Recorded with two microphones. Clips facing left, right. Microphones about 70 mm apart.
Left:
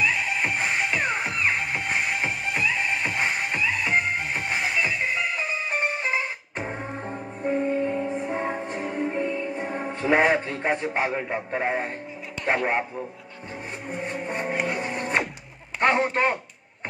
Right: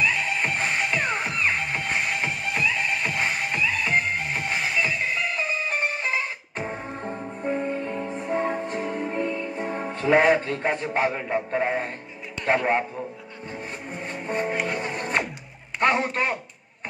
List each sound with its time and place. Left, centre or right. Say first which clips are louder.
0.0 s music: even; centre
12.4 s a man's voice: right 2 dB; centre
14.0 s music: right 3 dB; centre
15.8 s a man's voice: left 1 dB; left